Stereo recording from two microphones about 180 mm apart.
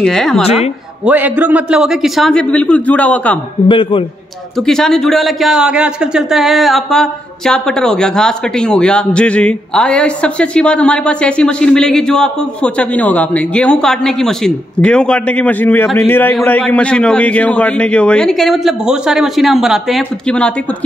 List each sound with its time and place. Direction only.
0.0 s speech: centre (ahead or behind)
1.0 s speech: 10° right (ahead or behind); by 3.3 s 10° left (ahead or behind)
3.6 s a man's voice: 30° left (ahead or behind)
4.6 s speech: 5° left (ahead or behind)